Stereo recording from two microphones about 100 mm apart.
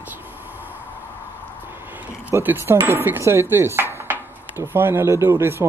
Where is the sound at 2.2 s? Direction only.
20° right (ahead or behind).